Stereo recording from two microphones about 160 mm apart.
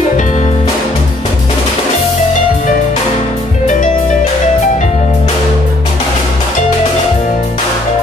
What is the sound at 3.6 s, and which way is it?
Music, 50° left (ahead or behind).